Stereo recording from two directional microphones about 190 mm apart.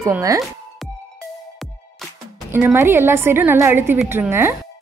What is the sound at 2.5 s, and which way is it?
A woman's voice, 10° right (ahead or behind).